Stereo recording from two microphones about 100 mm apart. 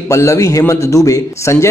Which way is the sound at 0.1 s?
30° left (ahead or behind).